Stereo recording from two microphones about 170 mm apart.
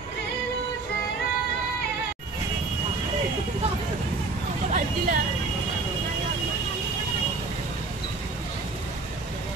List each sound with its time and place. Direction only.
4.6 s vehicle: 50° right (ahead or behind)